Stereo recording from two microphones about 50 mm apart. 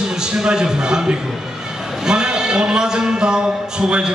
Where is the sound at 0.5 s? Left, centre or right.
Centre.